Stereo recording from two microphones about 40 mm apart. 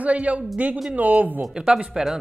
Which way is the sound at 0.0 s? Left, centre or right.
Right.